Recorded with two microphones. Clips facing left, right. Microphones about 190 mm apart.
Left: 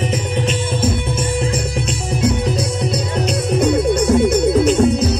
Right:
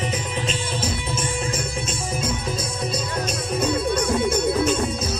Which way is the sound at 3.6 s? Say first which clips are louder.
Left 7 dB; 75° left (ahead or behind).